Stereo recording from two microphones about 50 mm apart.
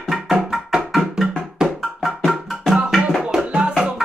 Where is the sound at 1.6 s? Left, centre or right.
Centre.